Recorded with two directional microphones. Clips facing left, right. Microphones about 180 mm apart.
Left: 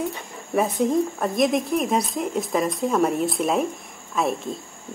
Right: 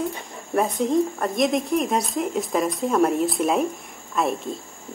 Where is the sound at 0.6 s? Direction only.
Centre (ahead or behind).